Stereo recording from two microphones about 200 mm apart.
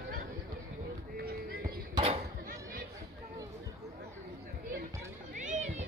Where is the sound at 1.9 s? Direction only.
30° right (ahead or behind).